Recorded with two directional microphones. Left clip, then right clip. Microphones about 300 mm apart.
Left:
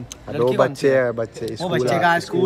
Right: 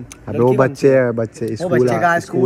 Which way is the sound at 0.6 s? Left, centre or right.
Centre.